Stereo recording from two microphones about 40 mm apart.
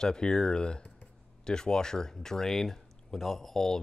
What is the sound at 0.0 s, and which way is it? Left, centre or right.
Speech, centre.